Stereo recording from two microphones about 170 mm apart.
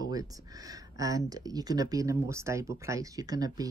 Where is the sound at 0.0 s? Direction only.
20° right (ahead or behind).